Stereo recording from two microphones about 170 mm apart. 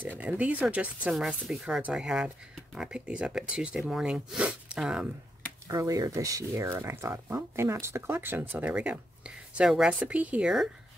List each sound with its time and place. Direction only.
0.2 s speech: 10° right (ahead or behind)
5.7 s speech: 20° right (ahead or behind); by 10.7 s 5° right (ahead or behind)